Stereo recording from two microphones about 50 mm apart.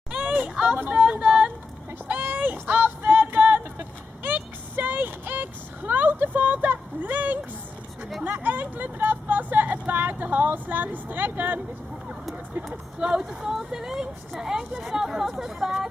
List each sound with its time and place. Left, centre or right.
0.2 s a sound: right
0.8 s speech: right
2.1 s a sound: right
3.7 s vehicle: right
8.2 s speech: right
13.0 s speech: right
13.3 s speech: centre